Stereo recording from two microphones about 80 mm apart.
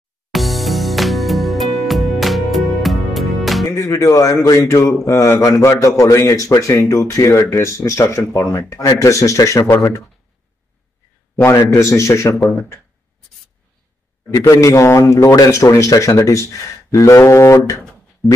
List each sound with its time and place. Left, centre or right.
0.3 s music: centre
3.6 s a man's voice: left
8.1 s speech: left
8.5 s a man's voice: left
11.5 s a man's voice: left
14.3 s a man's voice: left